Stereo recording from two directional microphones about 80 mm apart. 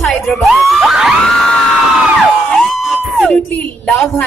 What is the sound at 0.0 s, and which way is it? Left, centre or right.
Music, centre.